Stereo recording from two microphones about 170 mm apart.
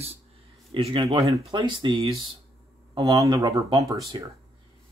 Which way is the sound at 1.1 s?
20° right (ahead or behind).